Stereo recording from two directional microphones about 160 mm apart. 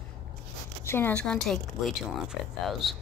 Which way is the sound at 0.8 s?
15° left (ahead or behind).